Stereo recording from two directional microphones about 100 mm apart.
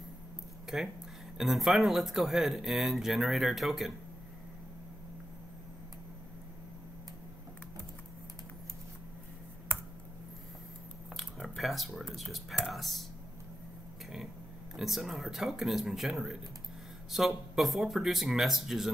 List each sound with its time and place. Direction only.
0.7 s speech: 5° right (ahead or behind)
9.7 s computer keyboard: 20° right (ahead or behind)
11.1 s speech: centre (ahead or behind)
14.8 s speech: centre (ahead or behind)